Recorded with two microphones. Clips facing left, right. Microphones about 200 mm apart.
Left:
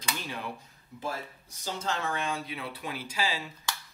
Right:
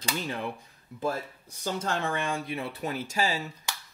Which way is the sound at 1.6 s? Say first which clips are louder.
Right 3 dB; 55° right (ahead or behind).